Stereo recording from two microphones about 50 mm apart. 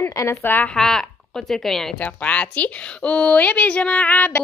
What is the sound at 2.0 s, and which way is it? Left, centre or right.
A woman's voice, left.